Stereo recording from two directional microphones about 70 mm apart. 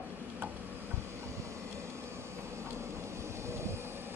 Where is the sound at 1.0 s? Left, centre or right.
Right.